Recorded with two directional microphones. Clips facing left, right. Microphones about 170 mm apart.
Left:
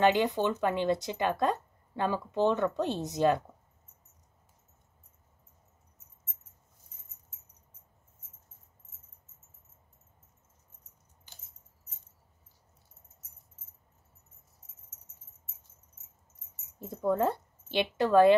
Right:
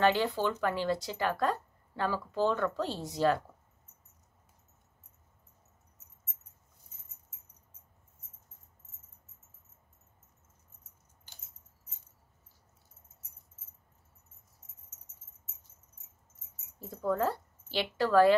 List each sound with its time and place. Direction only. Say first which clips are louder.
0.0 s speech: left 2 dB; 20° left (ahead or behind)
16.8 s a woman's voice: left 3 dB; 20° left (ahead or behind)